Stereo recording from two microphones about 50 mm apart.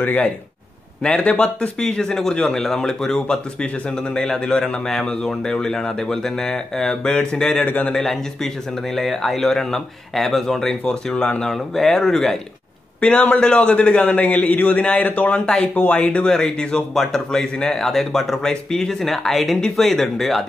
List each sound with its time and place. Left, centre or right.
0.0 s a man's voice: left
1.8 s speech: centre
11.1 s a man's voice: left
11.5 s speech: centre
13.1 s a man's voice: left
16.3 s speech: centre